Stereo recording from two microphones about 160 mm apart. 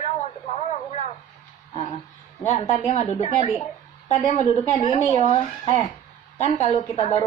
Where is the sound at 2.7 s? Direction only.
45° left (ahead or behind).